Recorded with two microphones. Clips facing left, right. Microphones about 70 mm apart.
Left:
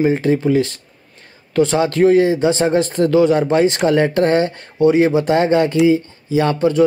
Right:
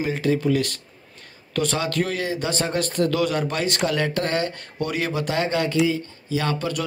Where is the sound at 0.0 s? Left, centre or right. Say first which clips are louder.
Left 7 dB; left.